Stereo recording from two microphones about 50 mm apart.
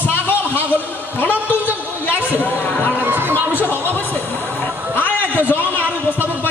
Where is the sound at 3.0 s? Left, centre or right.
Right.